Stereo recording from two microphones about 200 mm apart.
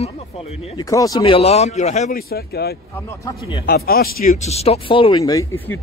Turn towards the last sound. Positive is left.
turn(degrees=15)  # may be behind; listen again after turning